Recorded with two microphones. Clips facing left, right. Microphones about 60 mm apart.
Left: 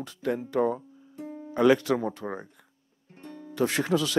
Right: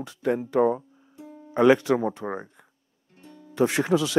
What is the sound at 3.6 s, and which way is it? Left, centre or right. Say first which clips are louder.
Speech: right 3 dB; centre.